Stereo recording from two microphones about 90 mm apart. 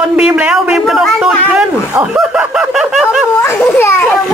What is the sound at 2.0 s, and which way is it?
Snicker, 10° right (ahead or behind).